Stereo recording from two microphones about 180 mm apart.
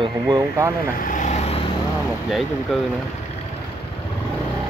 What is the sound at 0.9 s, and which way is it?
Vehicle, 50° left (ahead or behind).